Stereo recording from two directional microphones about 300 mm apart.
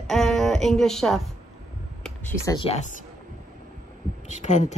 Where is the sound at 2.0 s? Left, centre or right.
Centre.